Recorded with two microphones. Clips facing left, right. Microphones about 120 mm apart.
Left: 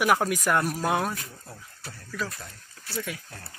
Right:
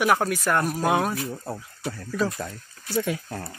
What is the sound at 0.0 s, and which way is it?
Speech, 5° left (ahead or behind).